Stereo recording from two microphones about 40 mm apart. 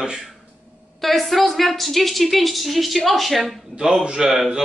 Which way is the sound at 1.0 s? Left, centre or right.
Centre.